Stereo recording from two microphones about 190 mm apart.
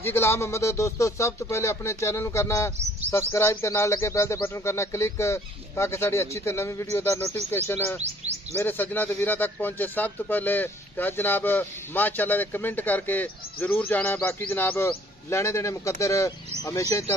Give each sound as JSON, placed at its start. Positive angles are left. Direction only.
{"t": 0.0, "sound": "speech", "side_deg": 15}